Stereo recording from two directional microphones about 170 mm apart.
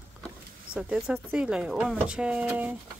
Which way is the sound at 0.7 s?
5° right (ahead or behind).